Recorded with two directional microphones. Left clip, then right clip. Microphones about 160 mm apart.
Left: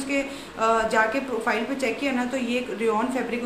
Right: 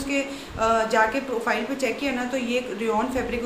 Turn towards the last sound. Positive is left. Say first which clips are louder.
# even
turn(degrees=5)  # may be behind; listen again after turning